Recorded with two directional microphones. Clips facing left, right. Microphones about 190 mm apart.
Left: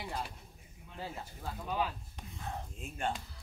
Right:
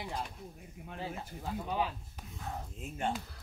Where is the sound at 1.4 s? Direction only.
20° right (ahead or behind).